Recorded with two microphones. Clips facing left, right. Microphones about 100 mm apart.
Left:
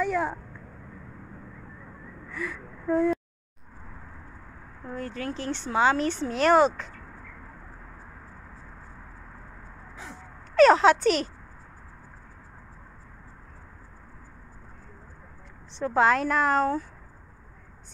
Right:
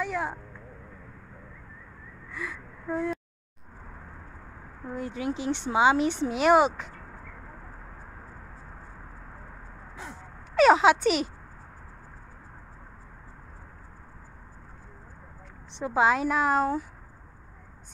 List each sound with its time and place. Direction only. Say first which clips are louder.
0.0 s a sound: left 4 dB; centre (ahead or behind)
2.3 s gasp: left 3 dB; centre (ahead or behind)
4.8 s speech: right 2 dB; 15° right (ahead or behind)
10.5 s speech: left 2 dB; 10° right (ahead or behind)
15.8 s speech: left 1 dB; 5° right (ahead or behind)